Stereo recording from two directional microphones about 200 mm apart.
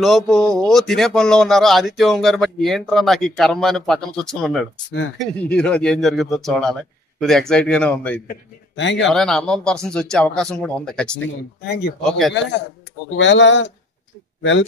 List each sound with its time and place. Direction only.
0.0 s speech: centre (ahead or behind)
8.7 s speech: 65° left (ahead or behind)
9.0 s speech: 5° left (ahead or behind)
11.6 s speech: 55° left (ahead or behind)
12.0 s speech: centre (ahead or behind)
13.1 s speech: 65° left (ahead or behind)